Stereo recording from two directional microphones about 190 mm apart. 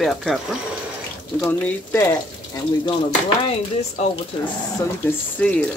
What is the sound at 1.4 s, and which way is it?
Speech, 10° left (ahead or behind).